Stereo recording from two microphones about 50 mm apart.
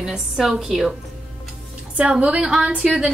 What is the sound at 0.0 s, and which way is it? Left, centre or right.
Speech, centre.